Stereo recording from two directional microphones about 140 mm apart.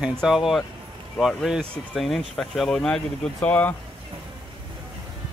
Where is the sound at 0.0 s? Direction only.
Centre (ahead or behind).